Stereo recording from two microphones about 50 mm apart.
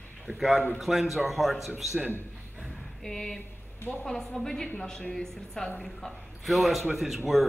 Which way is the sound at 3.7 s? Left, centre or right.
Left.